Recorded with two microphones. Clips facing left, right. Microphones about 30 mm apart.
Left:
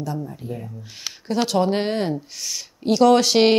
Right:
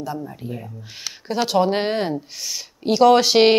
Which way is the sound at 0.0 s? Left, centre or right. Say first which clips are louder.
Even; centre.